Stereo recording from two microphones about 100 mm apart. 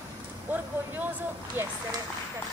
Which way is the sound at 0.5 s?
20° right (ahead or behind).